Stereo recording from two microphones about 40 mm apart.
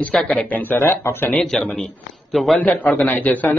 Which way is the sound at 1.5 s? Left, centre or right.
Centre.